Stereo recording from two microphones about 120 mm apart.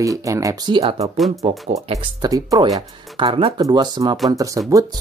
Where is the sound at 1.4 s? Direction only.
60° right (ahead or behind).